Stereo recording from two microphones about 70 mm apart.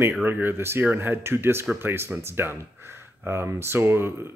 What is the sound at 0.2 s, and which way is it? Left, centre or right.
Speech, right.